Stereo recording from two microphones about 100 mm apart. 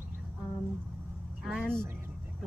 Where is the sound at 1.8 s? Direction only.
20° right (ahead or behind).